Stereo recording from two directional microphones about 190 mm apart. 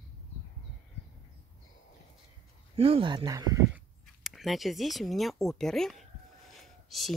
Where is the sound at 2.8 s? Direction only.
30° right (ahead or behind).